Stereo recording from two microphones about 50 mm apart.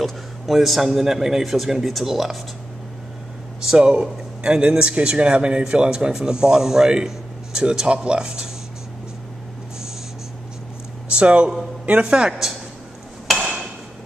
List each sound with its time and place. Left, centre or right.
0.0 s a man's voice: centre
3.6 s speech: centre
11.1 s speech: right
12.3 s speech: centre